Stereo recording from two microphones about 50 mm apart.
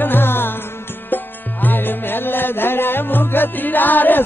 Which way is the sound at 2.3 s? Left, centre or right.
Left.